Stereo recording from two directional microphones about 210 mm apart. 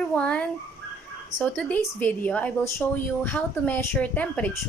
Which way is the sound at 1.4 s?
10° left (ahead or behind).